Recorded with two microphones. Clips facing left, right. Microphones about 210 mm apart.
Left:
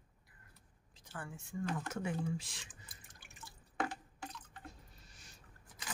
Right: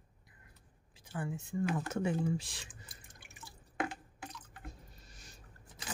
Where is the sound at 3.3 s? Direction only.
10° right (ahead or behind).